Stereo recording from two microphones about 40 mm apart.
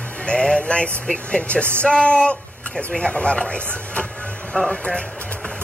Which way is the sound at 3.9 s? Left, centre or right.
Left.